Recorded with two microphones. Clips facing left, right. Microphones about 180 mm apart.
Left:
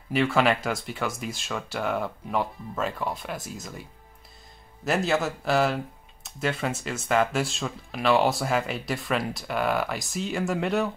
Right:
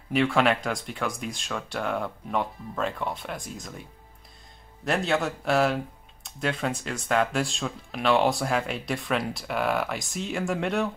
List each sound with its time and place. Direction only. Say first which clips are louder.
0.1 s speech: even; centre (ahead or behind)
4.8 s speech: left 1 dB; centre (ahead or behind)